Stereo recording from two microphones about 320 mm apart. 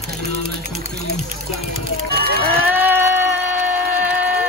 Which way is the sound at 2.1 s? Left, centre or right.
Right.